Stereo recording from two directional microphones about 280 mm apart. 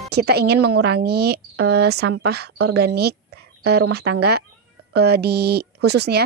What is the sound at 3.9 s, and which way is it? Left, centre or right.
Speech, right.